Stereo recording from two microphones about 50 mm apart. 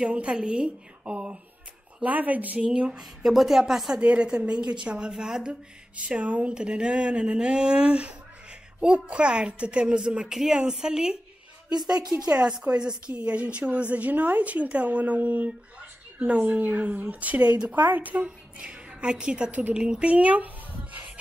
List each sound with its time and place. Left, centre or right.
0.0 s a woman's voice: right
2.6 s a woman's voice: centre
3.0 s a woman's voice: centre
4.0 s a woman's voice: right
5.9 s a woman's voice: right
17.7 s a woman's voice: right